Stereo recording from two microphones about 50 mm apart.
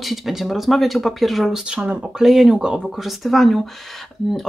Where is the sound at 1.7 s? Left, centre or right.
Centre.